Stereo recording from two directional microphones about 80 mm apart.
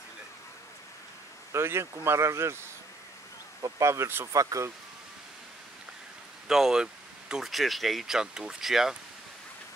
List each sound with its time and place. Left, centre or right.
1.5 s speech: right
3.6 s speech: right
4.3 s speech: right
6.4 s speech: centre